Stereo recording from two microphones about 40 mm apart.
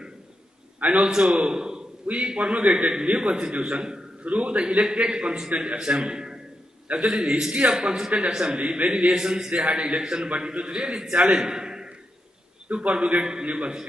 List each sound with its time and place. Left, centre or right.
0.7 s a man's voice: right
1.1 s a man's voice: right
3.2 s a man's voice: right
3.5 s a man's voice: right
9.1 s a man's voice: centre
9.5 s a man's voice: right
11.3 s a sound: centre
12.6 s a man's voice: right